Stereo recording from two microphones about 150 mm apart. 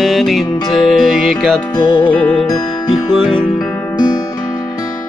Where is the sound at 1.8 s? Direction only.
35° left (ahead or behind).